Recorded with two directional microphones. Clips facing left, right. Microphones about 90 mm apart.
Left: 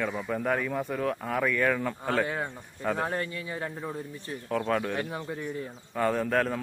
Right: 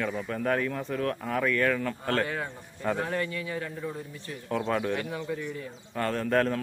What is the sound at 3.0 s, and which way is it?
Speech, 30° left (ahead or behind).